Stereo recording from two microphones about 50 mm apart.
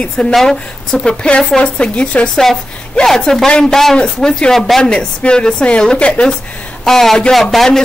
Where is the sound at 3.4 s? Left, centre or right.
Centre.